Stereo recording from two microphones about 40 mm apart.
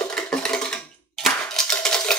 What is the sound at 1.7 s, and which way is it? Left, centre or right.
Cutlery, centre.